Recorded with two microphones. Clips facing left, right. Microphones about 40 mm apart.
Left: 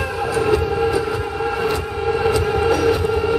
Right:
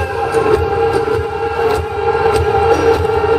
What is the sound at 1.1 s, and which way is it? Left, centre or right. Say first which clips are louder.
Civil defense siren: right 5 dB; centre.